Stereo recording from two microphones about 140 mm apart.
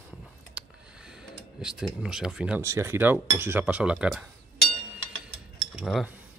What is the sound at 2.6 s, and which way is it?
Speech, 20° right (ahead or behind).